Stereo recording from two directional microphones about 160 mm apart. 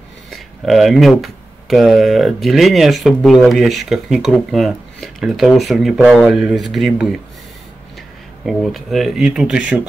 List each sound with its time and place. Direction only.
0.3 s speech: centre (ahead or behind)
8.5 s speech: centre (ahead or behind)